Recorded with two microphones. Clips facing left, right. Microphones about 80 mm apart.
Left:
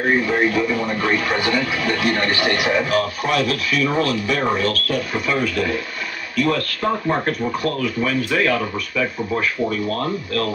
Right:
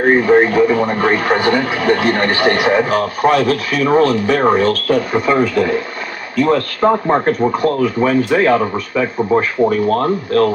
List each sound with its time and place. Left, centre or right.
0.0 s speech: right